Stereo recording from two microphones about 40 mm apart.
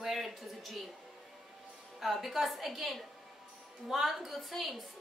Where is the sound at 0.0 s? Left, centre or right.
Centre.